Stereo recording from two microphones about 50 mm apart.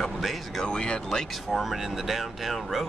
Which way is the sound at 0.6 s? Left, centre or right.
Centre.